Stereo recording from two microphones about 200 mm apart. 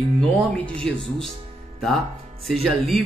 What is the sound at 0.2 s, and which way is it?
Speech, 5° left (ahead or behind).